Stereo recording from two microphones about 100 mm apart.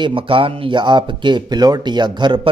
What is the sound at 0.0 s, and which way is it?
Speech, 65° right (ahead or behind).